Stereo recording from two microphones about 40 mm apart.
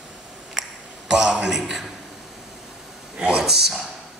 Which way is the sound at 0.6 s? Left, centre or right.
Centre.